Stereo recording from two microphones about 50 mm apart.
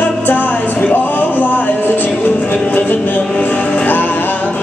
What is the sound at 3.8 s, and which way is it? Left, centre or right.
Music, left.